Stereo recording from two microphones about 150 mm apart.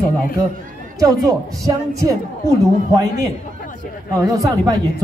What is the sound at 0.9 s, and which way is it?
A man's voice, 20° right (ahead or behind).